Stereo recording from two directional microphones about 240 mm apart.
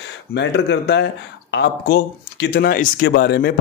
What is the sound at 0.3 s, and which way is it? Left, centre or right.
Speech, left.